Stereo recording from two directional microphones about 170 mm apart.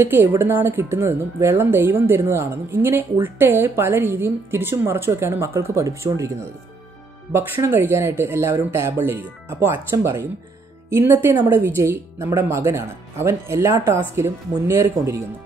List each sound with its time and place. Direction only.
0.0 s speech: 15° right (ahead or behind)